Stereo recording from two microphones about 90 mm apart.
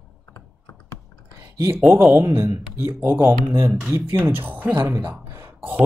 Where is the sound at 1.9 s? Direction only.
30° right (ahead or behind).